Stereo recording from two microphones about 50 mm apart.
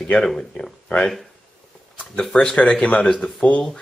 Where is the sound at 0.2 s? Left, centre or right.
Centre.